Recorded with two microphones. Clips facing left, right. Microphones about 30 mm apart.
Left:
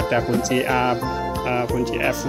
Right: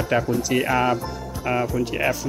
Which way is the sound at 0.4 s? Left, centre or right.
Centre.